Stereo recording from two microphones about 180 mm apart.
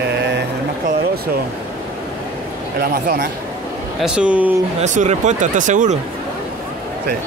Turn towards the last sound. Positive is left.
turn(degrees=-45)  # may be behind; listen again after turning